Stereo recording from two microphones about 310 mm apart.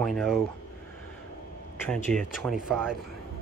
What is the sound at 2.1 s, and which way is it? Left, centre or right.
Speech, right.